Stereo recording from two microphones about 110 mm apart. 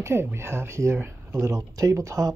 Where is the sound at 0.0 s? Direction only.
20° right (ahead or behind).